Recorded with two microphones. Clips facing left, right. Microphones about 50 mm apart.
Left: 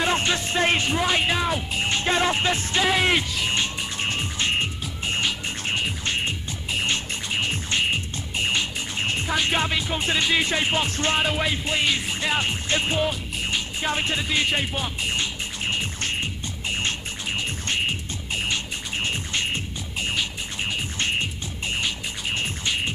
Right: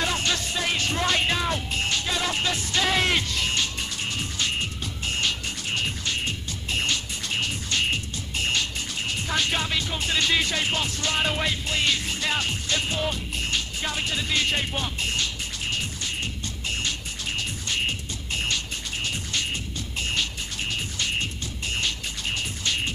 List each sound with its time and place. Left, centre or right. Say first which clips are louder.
0.0 s music: left 3 dB; left
0.8 s speech: left 2 dB; centre
1.9 s music: left 7 dB; left
2.8 s speech: left 2 dB; centre
3.4 s music: left 2 dB; left
10.9 s music: left 4 dB; left
11.1 s speech: even; centre
11.5 s music: left 2 dB; left
13.0 s music: left 2 dB; centre
14.7 s speech: left 1 dB; centre
15.0 s music: left 2 dB; left
18.9 s music: left 3 dB; left
20.1 s music: left 1 dB; centre